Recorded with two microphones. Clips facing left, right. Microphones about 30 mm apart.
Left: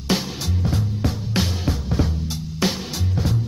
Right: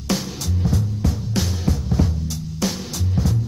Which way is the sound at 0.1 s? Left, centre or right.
Left.